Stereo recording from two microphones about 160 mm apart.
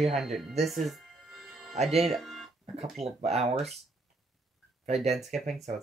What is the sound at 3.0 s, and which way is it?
Speech, 40° right (ahead or behind).